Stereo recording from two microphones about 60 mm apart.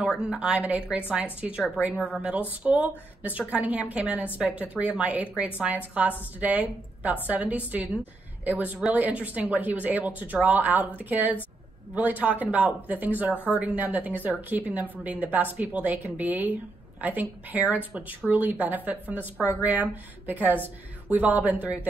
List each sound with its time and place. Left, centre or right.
0.1 s a woman's voice: centre